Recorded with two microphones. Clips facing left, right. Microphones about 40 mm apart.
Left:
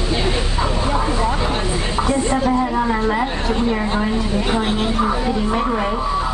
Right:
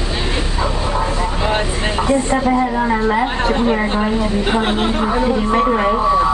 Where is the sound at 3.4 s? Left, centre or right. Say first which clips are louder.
Right 4 dB; right.